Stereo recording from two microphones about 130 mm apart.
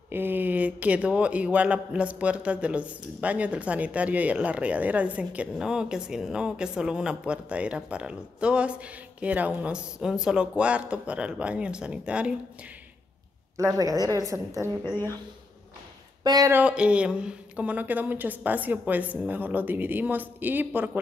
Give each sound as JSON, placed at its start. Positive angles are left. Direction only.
{"t": 0.1, "sound": "a man's voice", "side_deg": -15}
{"t": 13.7, "sound": "a woman's voice", "side_deg": -30}
{"t": 16.3, "sound": "a woman's voice", "side_deg": -30}
{"t": 16.5, "sound": "a man's voice", "side_deg": -10}